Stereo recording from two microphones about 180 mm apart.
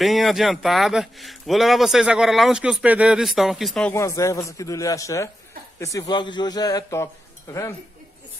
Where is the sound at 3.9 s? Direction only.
15° left (ahead or behind).